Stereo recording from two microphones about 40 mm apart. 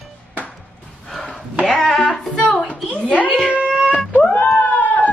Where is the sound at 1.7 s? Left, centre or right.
Centre.